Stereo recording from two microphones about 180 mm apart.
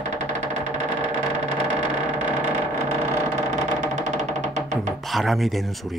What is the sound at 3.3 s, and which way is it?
Music, 40° right (ahead or behind).